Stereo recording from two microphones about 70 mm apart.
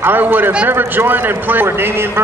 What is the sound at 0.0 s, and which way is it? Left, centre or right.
A man's voice, right.